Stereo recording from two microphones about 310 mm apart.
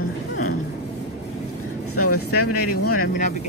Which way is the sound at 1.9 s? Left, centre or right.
Left.